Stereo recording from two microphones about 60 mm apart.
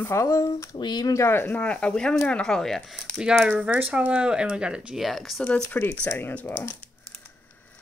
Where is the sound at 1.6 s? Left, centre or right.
Centre.